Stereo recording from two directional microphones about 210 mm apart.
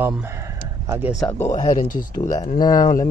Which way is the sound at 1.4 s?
35° left (ahead or behind).